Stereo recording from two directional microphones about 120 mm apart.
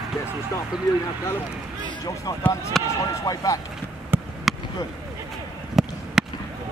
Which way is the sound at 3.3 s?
35° left (ahead or behind).